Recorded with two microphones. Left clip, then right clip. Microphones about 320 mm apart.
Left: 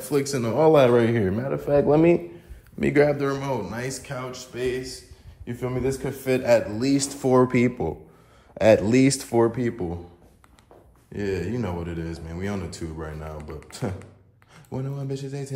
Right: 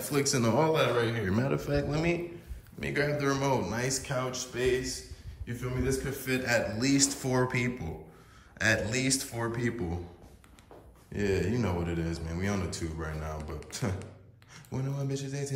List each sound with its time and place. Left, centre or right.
0.0 s a man's voice: centre
0.7 s speech: centre
1.3 s a man's voice: centre
2.8 s speech: left
3.2 s a man's voice: centre
5.5 s a man's voice: centre
11.1 s a man's voice: centre